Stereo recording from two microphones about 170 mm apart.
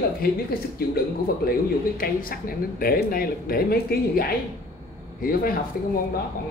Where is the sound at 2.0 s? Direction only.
55° left (ahead or behind).